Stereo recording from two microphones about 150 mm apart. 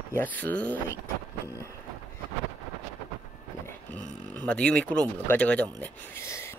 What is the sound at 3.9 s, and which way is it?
Speech, 10° left (ahead or behind).